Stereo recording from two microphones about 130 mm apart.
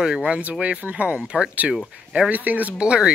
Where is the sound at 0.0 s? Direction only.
5° right (ahead or behind).